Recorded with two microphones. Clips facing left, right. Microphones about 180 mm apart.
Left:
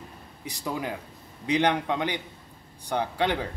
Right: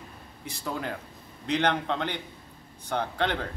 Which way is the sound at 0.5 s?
10° left (ahead or behind).